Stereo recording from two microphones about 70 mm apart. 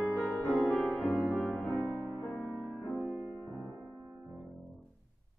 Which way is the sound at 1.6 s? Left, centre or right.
Centre.